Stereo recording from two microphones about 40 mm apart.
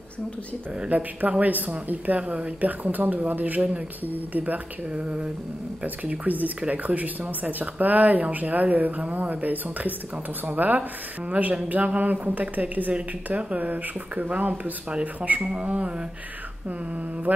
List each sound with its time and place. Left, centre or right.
0.8 s speech: right
4.9 s speech: right
6.0 s speech: right
12.9 s speech: right